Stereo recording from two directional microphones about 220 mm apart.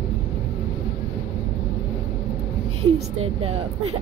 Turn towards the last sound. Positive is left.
turn(degrees=-25)  # may be behind; listen again after turning